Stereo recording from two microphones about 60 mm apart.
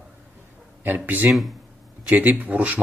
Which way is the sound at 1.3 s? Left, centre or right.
Right.